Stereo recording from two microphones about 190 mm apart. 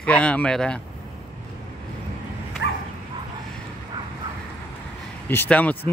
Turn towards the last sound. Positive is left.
turn(degrees=10)  # may be behind; listen again after turning